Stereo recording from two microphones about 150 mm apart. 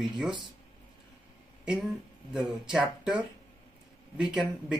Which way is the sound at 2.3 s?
5° right (ahead or behind).